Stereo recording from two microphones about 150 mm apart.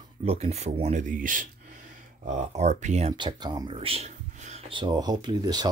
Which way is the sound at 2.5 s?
50° right (ahead or behind).